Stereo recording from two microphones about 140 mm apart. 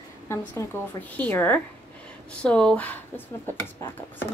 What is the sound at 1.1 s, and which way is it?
A woman's voice, 10° left (ahead or behind).